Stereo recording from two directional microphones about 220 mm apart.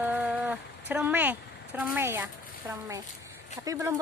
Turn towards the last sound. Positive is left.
turn(degrees=-15)  # may be behind; listen again after turning